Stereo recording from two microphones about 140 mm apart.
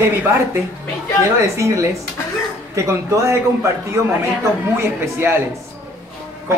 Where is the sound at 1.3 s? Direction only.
20° right (ahead or behind).